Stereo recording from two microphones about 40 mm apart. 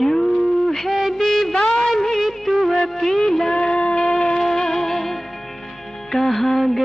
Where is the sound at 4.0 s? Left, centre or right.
Centre.